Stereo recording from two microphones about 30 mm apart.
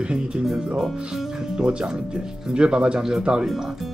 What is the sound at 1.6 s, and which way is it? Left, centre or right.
Speech, right.